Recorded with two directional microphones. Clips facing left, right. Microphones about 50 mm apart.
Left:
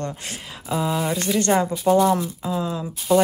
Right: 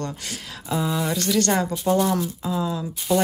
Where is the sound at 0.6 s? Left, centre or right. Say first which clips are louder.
Left 1 dB; centre.